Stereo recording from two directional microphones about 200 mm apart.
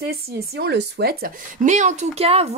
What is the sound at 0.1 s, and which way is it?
A woman's voice, 60° right (ahead or behind).